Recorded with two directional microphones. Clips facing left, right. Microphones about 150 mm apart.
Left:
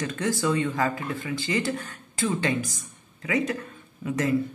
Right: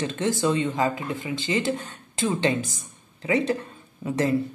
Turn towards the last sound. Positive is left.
turn(degrees=-30)  # may be behind; listen again after turning